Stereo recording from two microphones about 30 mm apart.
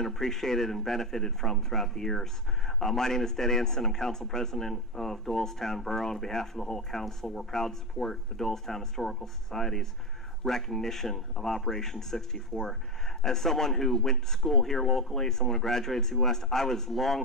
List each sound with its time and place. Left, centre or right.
0.0 s speech: centre